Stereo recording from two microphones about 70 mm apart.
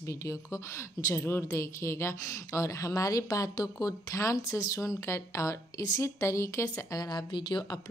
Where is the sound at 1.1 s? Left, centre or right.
Left.